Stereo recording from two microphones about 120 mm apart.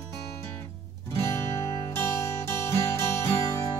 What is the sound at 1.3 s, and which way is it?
Music, 20° left (ahead or behind).